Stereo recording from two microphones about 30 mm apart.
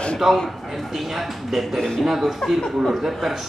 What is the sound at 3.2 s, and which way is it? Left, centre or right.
Speech, centre.